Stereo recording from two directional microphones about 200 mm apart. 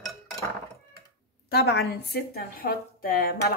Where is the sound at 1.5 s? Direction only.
55° left (ahead or behind).